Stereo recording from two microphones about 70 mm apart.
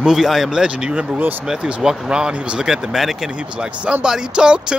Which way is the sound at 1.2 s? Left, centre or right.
Right.